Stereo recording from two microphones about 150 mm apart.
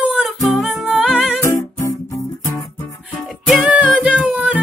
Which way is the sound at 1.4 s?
20° left (ahead or behind).